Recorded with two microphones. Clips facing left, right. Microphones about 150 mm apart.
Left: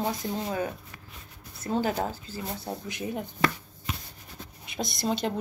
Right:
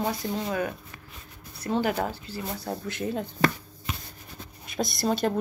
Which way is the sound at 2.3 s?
15° left (ahead or behind).